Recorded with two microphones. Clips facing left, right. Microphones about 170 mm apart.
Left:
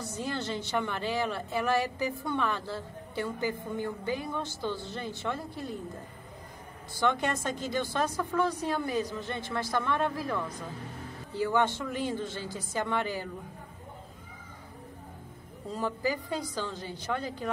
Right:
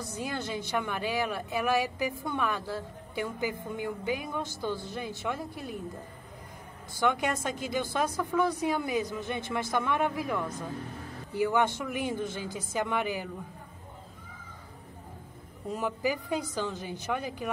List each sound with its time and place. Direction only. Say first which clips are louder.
0.0 s a woman's voice: left 1 dB; 15° right (ahead or behind)
7.0 s a woman's voice: even; 10° right (ahead or behind)
15.7 s a woman's voice: right 1 dB; 15° right (ahead or behind)